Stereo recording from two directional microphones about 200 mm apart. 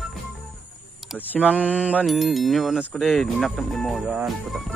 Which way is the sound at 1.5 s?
5° right (ahead or behind).